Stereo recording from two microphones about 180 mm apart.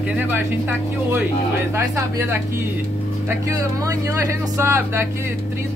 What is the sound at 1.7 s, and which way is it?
Speech, 15° right (ahead or behind).